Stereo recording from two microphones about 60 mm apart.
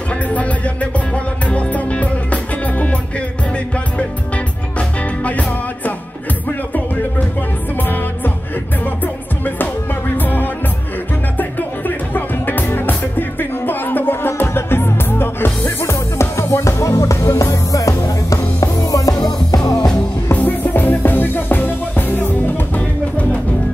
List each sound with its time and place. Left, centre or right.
1.5 s music: left
9.6 s music: left
12.1 s music: left
15.8 s music: left
20.3 s music: left
22.8 s music: left